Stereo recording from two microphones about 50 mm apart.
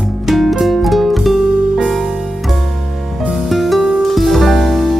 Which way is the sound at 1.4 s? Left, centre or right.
Centre.